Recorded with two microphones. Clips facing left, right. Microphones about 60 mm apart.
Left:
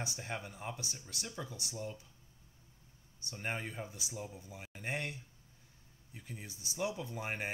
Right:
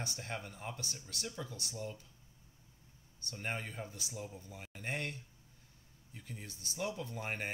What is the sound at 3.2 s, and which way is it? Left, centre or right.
Speech, centre.